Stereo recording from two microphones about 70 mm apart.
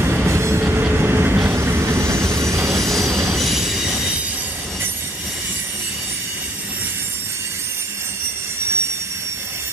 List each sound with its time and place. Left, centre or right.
0.0 s train: right
0.3 s train: right
0.6 s train: right
3.3 s train: centre